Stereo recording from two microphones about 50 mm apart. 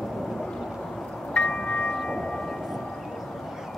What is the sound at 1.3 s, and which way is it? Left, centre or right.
Chime, centre.